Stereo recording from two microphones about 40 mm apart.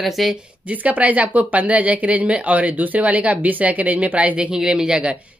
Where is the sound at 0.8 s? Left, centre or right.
Right.